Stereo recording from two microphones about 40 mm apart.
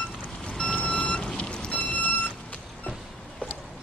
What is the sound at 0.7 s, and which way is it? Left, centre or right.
Vehicle, left.